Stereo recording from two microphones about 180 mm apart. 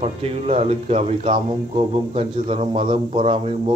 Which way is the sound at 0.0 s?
35° right (ahead or behind).